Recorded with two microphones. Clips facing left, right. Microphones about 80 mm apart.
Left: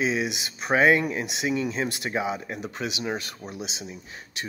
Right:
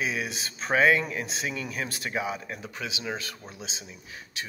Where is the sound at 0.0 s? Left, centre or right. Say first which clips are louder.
Left 5 dB; left.